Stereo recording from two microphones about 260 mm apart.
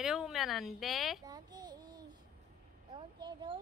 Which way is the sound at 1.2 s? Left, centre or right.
Centre.